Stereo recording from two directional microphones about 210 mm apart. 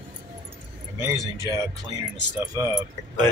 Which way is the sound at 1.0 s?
15° right (ahead or behind).